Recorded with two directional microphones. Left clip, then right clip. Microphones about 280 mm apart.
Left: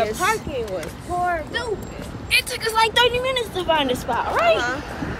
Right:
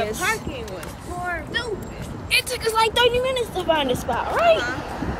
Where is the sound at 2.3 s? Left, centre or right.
Centre.